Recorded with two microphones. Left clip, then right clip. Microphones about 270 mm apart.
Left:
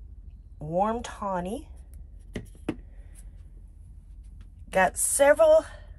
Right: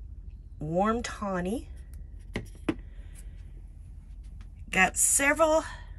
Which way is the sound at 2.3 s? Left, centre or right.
Centre.